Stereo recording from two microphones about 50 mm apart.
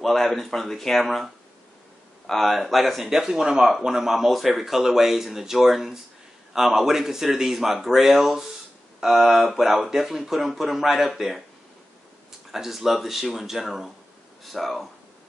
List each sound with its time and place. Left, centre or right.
0.0 s speech: centre
12.4 s speech: centre